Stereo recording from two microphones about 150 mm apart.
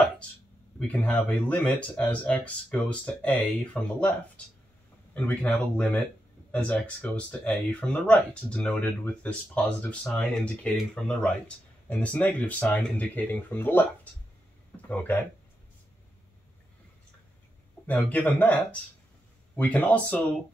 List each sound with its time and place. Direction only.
0.7 s speech: 5° left (ahead or behind)
5.1 s speech: 10° left (ahead or behind)
14.9 s speech: 10° left (ahead or behind)
18.1 s speech: 10° left (ahead or behind)